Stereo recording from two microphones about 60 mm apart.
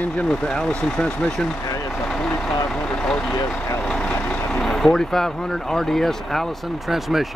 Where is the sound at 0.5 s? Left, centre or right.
Centre.